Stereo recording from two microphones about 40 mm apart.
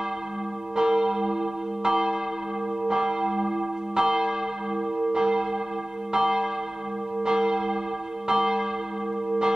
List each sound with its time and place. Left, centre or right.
0.7 s church bell: centre